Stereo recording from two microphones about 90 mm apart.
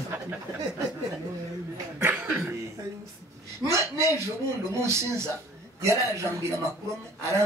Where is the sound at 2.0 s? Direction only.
20° right (ahead or behind).